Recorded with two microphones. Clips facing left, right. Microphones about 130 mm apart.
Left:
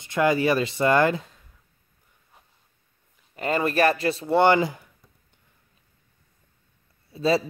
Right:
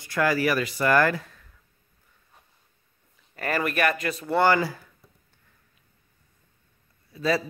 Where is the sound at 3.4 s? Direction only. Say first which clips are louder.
Left 3 dB; 25° left (ahead or behind).